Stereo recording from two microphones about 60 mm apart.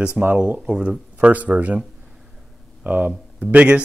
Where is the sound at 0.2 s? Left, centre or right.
Right.